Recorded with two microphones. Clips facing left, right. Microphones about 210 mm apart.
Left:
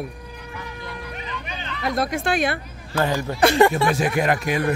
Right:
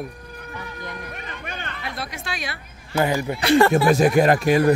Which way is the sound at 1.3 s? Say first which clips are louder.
Left 1 dB; 50° right (ahead or behind).